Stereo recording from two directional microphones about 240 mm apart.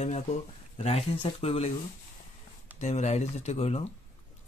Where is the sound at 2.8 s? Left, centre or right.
Left.